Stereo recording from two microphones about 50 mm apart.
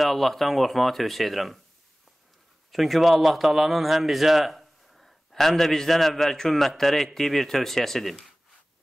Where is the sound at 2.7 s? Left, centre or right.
Centre.